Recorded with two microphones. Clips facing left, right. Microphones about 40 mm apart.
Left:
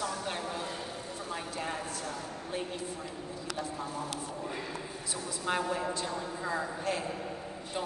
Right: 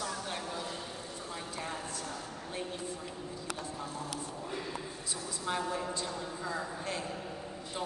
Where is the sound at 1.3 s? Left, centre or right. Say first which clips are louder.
Left 4 dB; left.